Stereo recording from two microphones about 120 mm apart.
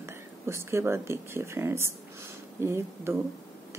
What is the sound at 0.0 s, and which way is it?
A woman's voice, 20° right (ahead or behind).